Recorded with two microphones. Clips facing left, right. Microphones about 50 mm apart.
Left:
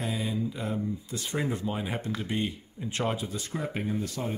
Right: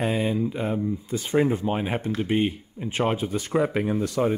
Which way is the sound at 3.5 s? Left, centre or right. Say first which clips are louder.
Right 9 dB; right.